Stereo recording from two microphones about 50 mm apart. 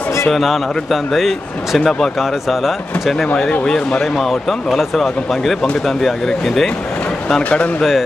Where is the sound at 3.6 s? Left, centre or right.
Centre.